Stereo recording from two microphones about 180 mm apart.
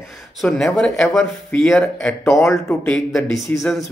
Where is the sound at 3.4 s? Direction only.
Centre (ahead or behind).